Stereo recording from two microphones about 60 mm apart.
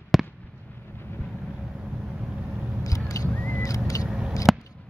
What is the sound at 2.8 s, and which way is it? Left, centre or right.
Vehicle, left.